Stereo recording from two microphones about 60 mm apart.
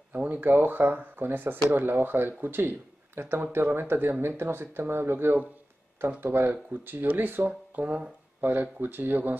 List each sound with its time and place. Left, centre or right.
0.1 s speech: right